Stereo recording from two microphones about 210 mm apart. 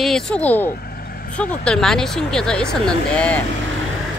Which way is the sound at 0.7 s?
45° left (ahead or behind).